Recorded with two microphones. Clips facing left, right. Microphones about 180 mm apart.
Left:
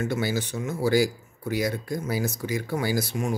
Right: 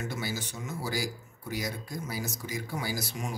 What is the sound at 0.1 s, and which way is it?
Speech, 65° left (ahead or behind).